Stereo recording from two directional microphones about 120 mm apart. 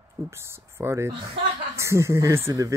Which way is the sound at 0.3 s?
20° right (ahead or behind).